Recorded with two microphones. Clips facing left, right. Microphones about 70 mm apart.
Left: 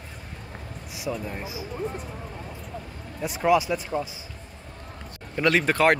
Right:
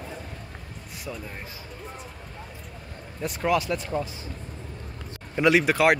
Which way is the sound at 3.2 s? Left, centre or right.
Centre.